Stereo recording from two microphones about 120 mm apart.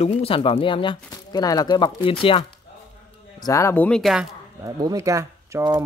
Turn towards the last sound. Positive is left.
turn(degrees=-30)  # may be behind; listen again after turning